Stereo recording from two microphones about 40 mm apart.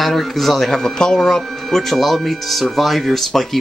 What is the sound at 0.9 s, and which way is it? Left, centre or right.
Speech, centre.